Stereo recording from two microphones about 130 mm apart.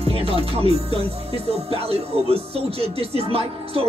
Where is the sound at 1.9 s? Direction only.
50° right (ahead or behind).